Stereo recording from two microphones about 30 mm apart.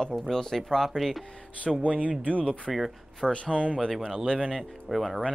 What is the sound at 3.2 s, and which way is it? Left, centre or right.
Speech, left.